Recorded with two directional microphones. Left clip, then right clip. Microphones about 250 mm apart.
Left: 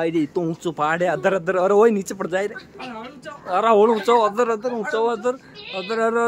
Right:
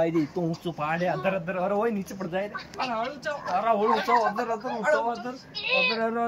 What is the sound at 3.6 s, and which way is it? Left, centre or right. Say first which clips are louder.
A man's voice: left 8 dB; left.